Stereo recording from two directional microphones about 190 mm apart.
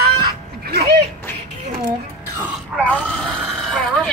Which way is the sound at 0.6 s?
55° right (ahead or behind).